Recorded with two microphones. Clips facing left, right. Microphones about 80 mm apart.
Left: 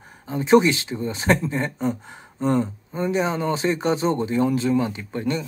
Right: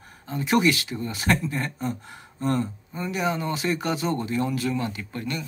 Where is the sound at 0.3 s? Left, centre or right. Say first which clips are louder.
Left 5 dB; left.